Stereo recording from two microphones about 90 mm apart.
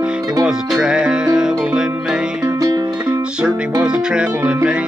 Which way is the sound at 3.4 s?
10° right (ahead or behind).